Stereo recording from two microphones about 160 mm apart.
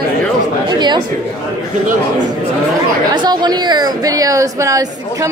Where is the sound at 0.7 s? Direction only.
25° right (ahead or behind).